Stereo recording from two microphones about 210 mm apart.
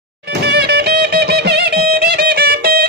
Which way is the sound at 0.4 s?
50° right (ahead or behind).